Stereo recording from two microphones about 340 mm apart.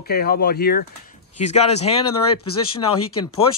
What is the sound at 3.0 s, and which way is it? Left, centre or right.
Speech, left.